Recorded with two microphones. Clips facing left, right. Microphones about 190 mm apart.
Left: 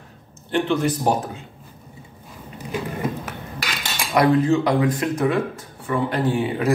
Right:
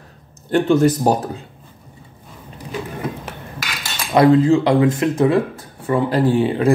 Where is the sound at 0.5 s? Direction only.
40° right (ahead or behind).